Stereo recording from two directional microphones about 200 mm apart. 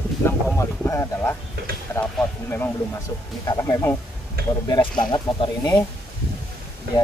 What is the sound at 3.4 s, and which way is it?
Speech, 20° left (ahead or behind).